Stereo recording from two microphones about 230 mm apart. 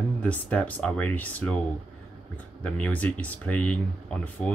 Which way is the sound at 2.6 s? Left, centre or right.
Centre.